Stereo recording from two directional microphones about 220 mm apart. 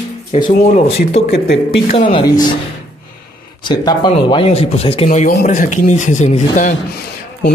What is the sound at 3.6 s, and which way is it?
Speech, 20° left (ahead or behind).